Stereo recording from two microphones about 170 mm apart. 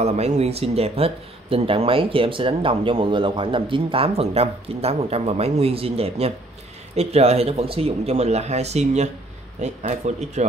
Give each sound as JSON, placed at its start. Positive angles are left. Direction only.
{"t": 0.0, "sound": "speech", "side_deg": -40}